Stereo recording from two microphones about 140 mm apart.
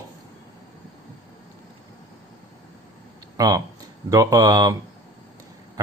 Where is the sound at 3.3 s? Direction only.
30° right (ahead or behind).